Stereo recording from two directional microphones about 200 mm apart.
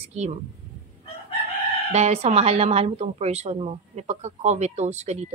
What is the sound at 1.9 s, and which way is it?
A woman's voice, 35° right (ahead or behind).